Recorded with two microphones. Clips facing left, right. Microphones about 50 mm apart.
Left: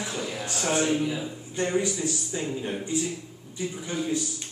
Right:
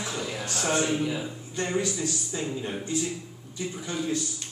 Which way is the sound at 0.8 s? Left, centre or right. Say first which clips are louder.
Left 1 dB; centre.